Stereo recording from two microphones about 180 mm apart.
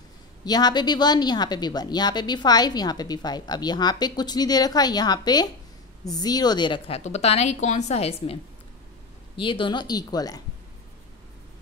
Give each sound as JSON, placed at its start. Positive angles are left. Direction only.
{"t": 0.5, "sound": "a woman's voice", "side_deg": 20}
{"t": 7.0, "sound": "a woman's voice", "side_deg": 35}
{"t": 9.4, "sound": "a woman's voice", "side_deg": 30}